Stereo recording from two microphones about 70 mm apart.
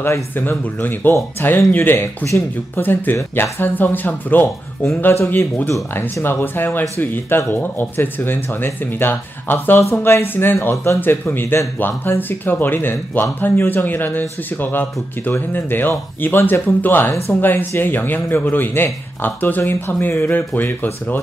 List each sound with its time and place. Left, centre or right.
0.0 s speech: left